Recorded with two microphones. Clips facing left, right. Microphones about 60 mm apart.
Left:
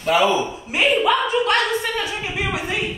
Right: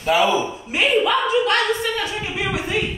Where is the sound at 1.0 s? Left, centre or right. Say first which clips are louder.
Even; centre.